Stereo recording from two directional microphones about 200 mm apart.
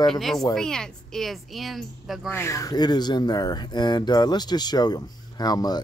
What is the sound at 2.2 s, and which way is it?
Speech, 10° left (ahead or behind).